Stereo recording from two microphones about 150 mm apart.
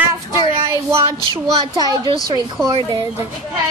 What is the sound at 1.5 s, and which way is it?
Speech, 30° right (ahead or behind).